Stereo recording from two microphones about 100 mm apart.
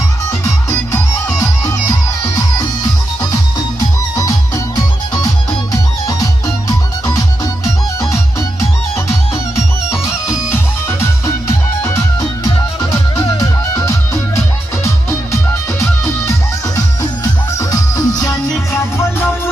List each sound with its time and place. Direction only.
0.9 s music: 35° left (ahead or behind)
4.2 s music: 40° left (ahead or behind)
9.8 s music: 25° left (ahead or behind)
16.7 s music: 35° left (ahead or behind)